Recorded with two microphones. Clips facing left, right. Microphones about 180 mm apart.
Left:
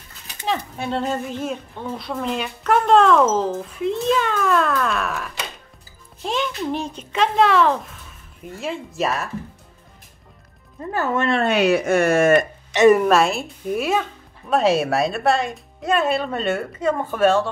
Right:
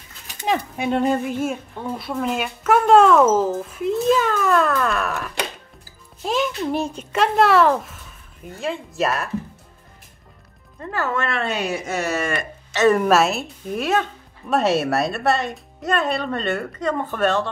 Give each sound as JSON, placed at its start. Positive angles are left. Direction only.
{"t": 0.5, "sound": "speech", "side_deg": -15}
{"t": 10.8, "sound": "speech", "side_deg": 15}
{"t": 11.4, "sound": "speech", "side_deg": 70}
{"t": 12.7, "sound": "a woman's voice", "side_deg": 15}
{"t": 13.0, "sound": "speech", "side_deg": 0}